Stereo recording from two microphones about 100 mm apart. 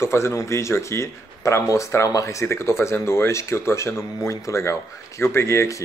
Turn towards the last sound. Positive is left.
turn(degrees=30)  # may be behind; listen again after turning